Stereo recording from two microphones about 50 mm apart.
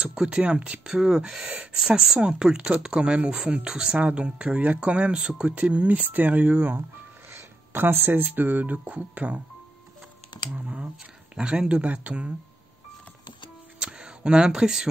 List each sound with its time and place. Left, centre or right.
0.0 s speech: centre; by 6.8 s right
7.7 s speech: right
11.3 s speech: centre
13.7 s a sound: centre